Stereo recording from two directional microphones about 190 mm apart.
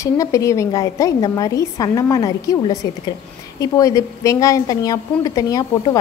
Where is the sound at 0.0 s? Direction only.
15° left (ahead or behind).